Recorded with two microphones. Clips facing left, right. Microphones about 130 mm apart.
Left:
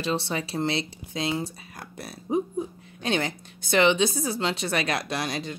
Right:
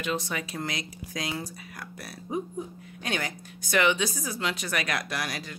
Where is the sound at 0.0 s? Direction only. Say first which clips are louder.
Left 3 dB; 30° left (ahead or behind).